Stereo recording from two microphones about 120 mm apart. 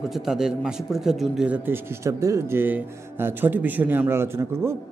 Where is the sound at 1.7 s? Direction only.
25° right (ahead or behind).